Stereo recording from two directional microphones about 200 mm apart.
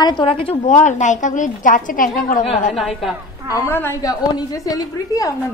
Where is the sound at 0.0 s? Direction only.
25° left (ahead or behind); by 2.4 s 45° left (ahead or behind).